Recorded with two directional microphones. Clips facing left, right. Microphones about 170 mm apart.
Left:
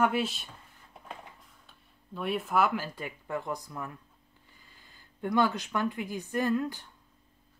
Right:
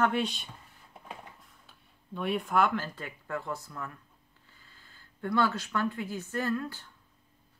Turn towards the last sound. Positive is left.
turn(degrees=15)  # may be behind; listen again after turning